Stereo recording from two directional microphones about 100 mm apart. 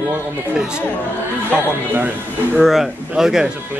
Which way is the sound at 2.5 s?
Centre (ahead or behind).